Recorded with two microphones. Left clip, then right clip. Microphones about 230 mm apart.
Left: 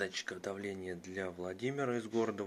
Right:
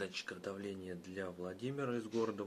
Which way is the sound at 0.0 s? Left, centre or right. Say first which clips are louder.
Left 4 dB; centre.